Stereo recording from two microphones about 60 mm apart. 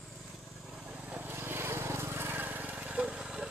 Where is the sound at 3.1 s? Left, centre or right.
Centre.